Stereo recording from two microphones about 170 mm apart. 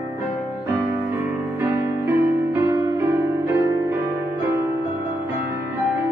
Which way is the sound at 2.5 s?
15° right (ahead or behind).